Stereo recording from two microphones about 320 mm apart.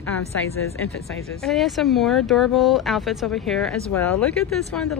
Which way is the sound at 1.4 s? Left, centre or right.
Centre.